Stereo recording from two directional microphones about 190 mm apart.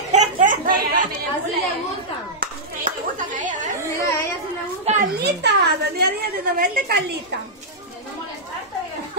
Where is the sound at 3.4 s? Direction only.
40° right (ahead or behind).